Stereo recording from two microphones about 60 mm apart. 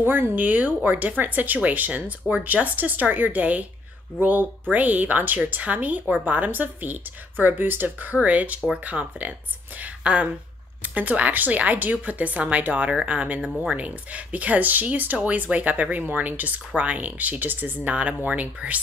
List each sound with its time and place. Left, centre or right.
0.0 s speech: right